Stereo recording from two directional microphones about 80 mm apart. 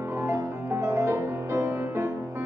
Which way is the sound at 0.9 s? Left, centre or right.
Right.